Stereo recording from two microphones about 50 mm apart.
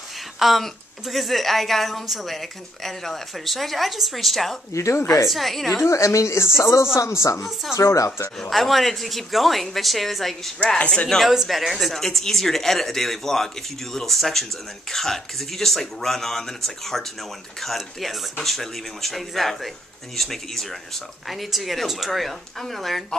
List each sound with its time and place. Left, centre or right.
0.4 s speech: centre
5.9 s speech: left
8.4 s speech: centre
10.8 s speech: left
11.2 s speech: centre